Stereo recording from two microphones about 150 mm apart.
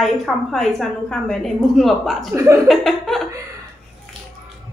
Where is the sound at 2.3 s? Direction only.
20° right (ahead or behind).